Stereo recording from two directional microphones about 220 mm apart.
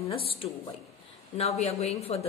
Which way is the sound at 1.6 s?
30° left (ahead or behind).